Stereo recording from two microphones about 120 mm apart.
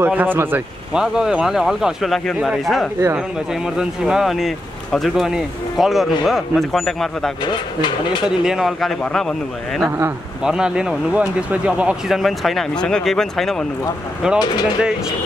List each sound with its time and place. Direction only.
0.0 s speech: 15° right (ahead or behind)
0.9 s speech: 5° right (ahead or behind)
8.5 s speech: centre (ahead or behind)
9.8 s speech: 20° right (ahead or behind)
10.4 s speech: 5° right (ahead or behind)
14.2 s speech: 5° right (ahead or behind)